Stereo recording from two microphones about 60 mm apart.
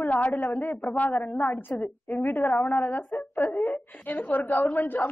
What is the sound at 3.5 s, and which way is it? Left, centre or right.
A woman's voice, left.